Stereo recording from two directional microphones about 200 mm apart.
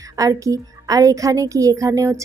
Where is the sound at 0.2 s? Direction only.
15° right (ahead or behind).